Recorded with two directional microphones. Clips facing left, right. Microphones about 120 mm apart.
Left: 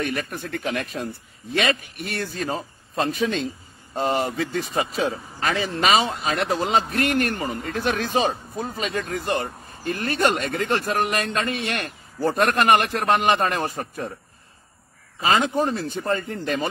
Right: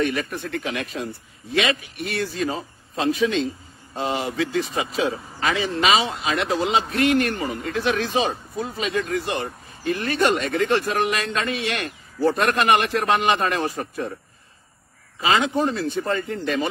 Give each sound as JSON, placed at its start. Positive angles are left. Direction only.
{"t": 0.0, "sound": "speech", "side_deg": 45}
{"t": 15.2, "sound": "speech", "side_deg": 40}